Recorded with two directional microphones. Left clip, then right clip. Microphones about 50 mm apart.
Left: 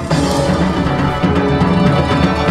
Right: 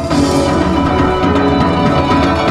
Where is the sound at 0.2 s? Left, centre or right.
Left.